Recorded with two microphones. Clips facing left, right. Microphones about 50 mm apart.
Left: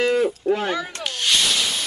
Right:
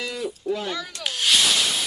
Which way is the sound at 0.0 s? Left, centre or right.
Left.